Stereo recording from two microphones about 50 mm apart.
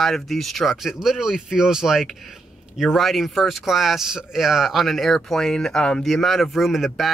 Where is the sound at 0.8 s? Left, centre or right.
Centre.